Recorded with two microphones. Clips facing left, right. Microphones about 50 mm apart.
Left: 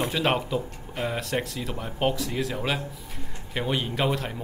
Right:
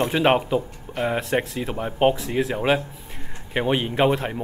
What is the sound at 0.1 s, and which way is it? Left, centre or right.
Speech, right.